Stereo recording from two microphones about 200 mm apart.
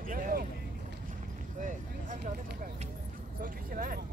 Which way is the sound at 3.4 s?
45° right (ahead or behind).